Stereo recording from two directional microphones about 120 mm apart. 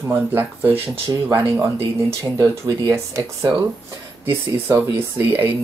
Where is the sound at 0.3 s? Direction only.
15° right (ahead or behind).